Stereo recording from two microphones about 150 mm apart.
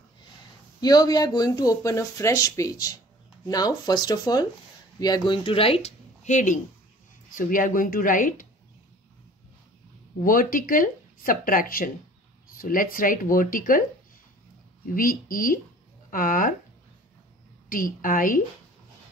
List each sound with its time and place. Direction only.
0.7 s speech: 25° left (ahead or behind); by 8.5 s 65° left (ahead or behind)
10.2 s speech: 70° left (ahead or behind)
14.9 s speech: 70° left (ahead or behind)
17.6 s speech: 65° left (ahead or behind)